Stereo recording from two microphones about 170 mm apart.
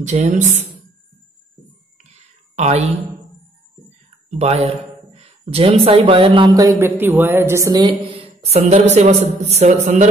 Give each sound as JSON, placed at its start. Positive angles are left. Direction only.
{"t": 0.0, "sound": "speech", "side_deg": -45}
{"t": 2.5, "sound": "speech", "side_deg": -40}
{"t": 4.4, "sound": "speech", "side_deg": -40}
{"t": 8.2, "sound": "a man's voice", "side_deg": -35}